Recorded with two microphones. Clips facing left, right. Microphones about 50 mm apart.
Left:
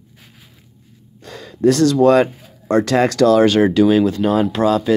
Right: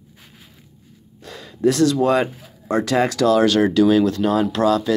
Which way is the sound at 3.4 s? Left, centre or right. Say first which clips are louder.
Left 3 dB; left.